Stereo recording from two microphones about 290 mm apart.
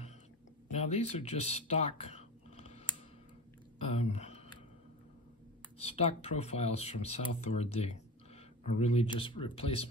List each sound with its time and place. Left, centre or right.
0.7 s speech: left
4.0 s speech: left
5.8 s speech: centre